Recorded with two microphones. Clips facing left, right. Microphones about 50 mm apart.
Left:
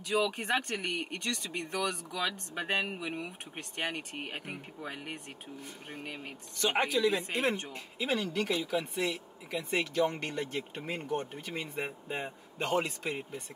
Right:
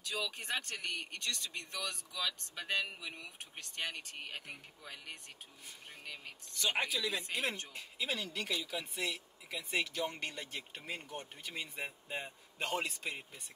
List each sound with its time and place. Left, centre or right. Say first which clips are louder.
0.0 s speech: left 10 dB; left; by 13.2 s centre